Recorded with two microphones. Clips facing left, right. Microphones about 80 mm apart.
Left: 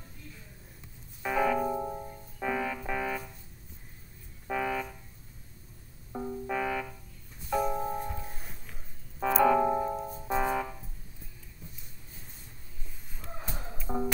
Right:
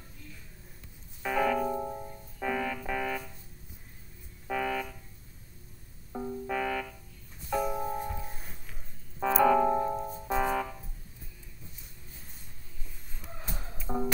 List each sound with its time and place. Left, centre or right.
1.2 s music: centre
4.5 s music: centre
6.1 s music: centre
13.1 s music: centre